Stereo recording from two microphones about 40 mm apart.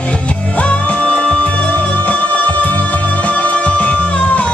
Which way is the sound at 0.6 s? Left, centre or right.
Left.